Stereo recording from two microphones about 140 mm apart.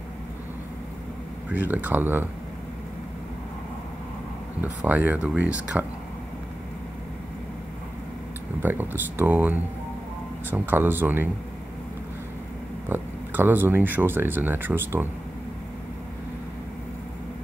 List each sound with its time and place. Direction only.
1.5 s speech: 10° right (ahead or behind)
4.6 s speech: 10° right (ahead or behind)
8.6 s speech: 15° right (ahead or behind)
12.8 s speech: 15° right (ahead or behind)